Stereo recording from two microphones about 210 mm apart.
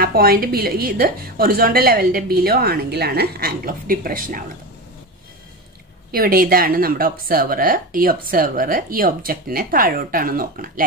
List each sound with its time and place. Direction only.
0.0 s speech: 45° right (ahead or behind)
6.1 s speech: 45° right (ahead or behind)